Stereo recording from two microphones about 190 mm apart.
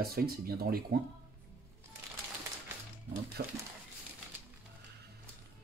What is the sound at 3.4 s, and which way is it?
Speech, 55° right (ahead or behind).